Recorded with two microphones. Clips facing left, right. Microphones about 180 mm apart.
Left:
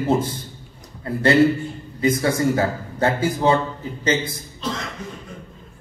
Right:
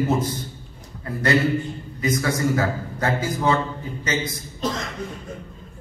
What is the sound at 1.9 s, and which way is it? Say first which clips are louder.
A man's voice: left 4 dB; 30° left (ahead or behind).